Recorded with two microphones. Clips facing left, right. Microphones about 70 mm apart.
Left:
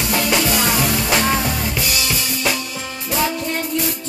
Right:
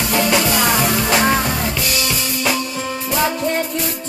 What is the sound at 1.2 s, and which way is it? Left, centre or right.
Music, centre.